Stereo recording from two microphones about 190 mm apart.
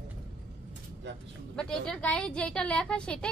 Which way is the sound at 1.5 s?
5° left (ahead or behind).